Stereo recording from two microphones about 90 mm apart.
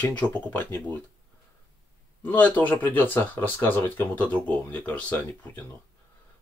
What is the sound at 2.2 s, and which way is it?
Speech, 20° left (ahead or behind).